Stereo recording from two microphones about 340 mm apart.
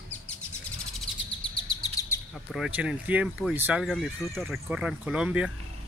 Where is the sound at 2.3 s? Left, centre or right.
Centre.